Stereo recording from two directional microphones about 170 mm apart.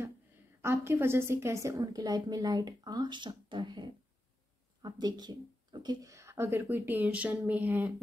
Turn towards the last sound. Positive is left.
turn(degrees=-10)  # may be behind; listen again after turning